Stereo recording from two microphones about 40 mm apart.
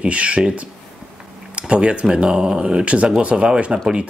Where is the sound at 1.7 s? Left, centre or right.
Right.